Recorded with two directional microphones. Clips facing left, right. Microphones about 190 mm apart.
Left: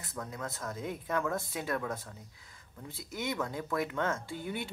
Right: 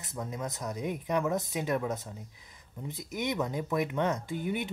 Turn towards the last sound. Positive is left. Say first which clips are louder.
# right 5 dB
turn(degrees=-20)  # may be behind; listen again after turning